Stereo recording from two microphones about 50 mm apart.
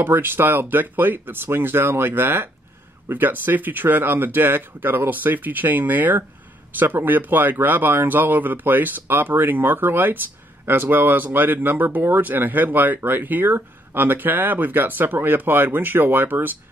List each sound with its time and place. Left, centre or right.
0.0 s speech: right